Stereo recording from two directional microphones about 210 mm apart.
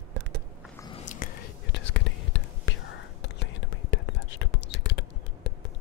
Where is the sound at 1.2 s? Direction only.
40° left (ahead or behind).